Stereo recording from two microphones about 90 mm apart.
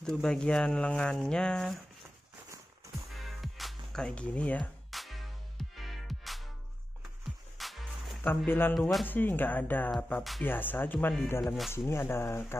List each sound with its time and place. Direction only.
0.0 s speech: 5° left (ahead or behind)
3.3 s music: centre (ahead or behind)
4.9 s music: centre (ahead or behind)
8.2 s speech: 25° left (ahead or behind)